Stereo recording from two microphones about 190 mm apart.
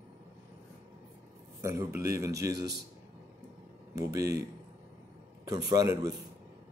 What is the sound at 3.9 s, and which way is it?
Speech, 15° right (ahead or behind).